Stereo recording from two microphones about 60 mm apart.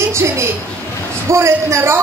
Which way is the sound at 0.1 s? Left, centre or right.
Right.